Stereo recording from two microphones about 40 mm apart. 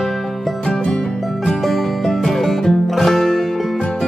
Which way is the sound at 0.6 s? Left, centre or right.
Left.